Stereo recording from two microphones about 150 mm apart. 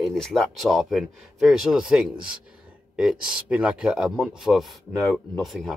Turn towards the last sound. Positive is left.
turn(degrees=0)  # may be behind; listen again after turning